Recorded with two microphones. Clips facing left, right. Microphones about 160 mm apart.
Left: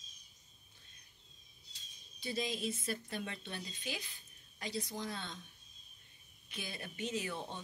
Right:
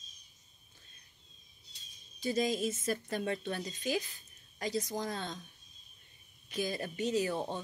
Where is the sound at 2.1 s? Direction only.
45° right (ahead or behind).